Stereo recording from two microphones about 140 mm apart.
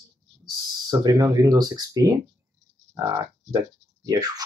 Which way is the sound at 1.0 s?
25° right (ahead or behind).